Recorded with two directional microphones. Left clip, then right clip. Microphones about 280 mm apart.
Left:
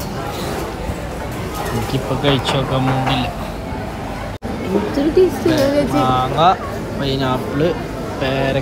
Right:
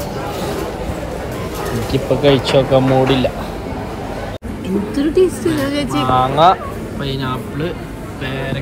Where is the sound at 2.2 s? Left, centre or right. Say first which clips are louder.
Right 5 dB; centre.